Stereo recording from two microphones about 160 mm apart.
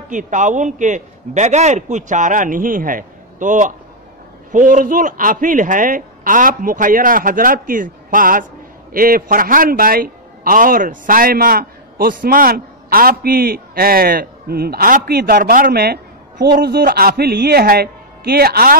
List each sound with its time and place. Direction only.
0.1 s a man's voice: 50° right (ahead or behind); by 18.8 s 70° right (ahead or behind)